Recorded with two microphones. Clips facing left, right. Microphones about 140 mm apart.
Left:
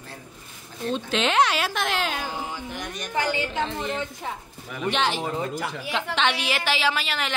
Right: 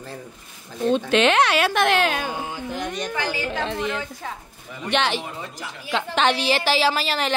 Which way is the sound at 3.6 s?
70° right (ahead or behind).